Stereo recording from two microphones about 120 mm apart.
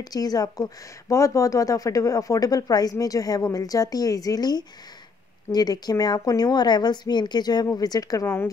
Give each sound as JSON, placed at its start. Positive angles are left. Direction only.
{"t": 0.0, "sound": "speech", "side_deg": 30}